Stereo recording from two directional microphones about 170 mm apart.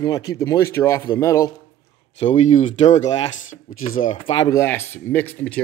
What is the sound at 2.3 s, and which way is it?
Speech, 45° left (ahead or behind).